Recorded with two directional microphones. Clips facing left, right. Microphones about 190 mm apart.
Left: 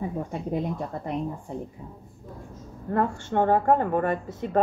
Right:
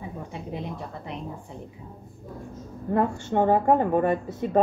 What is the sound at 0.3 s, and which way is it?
Speech, 45° left (ahead or behind).